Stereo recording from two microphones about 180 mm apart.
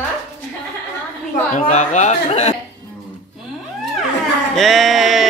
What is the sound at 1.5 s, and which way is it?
Speech, 45° left (ahead or behind).